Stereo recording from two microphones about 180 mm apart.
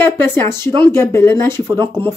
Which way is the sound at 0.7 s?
20° right (ahead or behind).